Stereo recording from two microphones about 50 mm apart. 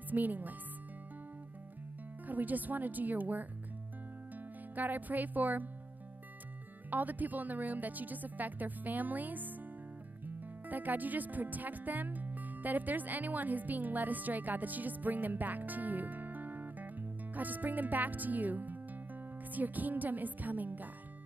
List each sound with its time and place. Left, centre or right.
0.1 s speech: right
2.2 s speech: right
4.7 s speech: right
6.9 s speech: right